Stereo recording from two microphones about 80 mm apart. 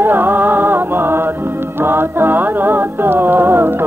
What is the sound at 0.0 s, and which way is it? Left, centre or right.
Music, right.